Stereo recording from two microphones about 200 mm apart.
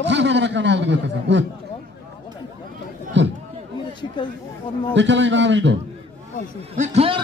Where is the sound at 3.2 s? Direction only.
60° right (ahead or behind).